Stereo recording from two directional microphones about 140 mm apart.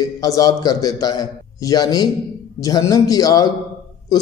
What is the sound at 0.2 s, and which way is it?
A man's voice, 25° left (ahead or behind).